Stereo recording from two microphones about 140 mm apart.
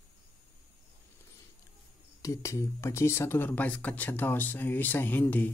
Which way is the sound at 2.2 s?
20° left (ahead or behind).